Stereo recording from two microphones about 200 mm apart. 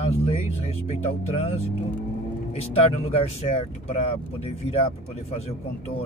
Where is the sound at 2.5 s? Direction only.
30° left (ahead or behind).